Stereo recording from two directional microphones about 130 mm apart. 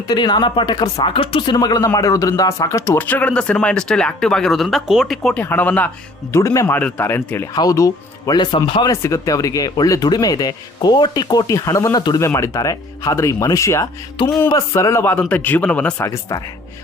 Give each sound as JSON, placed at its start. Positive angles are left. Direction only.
{"t": 0.1, "sound": "speech", "side_deg": 35}
{"t": 5.4, "sound": "speech", "side_deg": 15}
{"t": 8.9, "sound": "speech", "side_deg": 25}
{"t": 14.2, "sound": "speech", "side_deg": 35}
{"t": 14.5, "sound": "speech", "side_deg": 25}
{"t": 16.1, "sound": "speech", "side_deg": 25}